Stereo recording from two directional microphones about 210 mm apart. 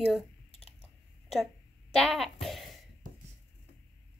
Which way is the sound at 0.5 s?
30° left (ahead or behind).